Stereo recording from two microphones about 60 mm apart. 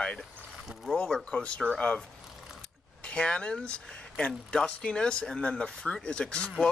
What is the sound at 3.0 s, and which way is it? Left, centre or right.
Speech, centre.